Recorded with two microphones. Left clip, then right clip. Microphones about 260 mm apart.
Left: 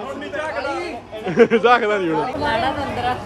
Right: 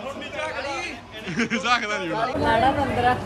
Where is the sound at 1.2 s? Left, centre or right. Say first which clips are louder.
Left 10 dB; centre.